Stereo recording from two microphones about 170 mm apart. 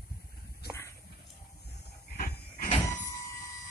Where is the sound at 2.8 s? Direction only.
20° left (ahead or behind).